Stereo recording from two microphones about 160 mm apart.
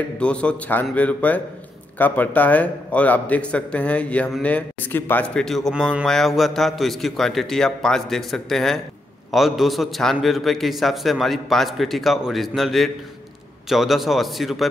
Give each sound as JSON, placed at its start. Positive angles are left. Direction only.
{"t": 0.2, "sound": "a man's voice", "side_deg": 5}